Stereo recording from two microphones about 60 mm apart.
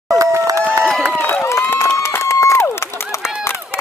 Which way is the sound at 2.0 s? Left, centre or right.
Left.